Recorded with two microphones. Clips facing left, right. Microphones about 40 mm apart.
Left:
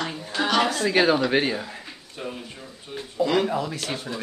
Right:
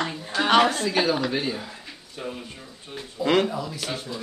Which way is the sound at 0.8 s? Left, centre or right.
Left.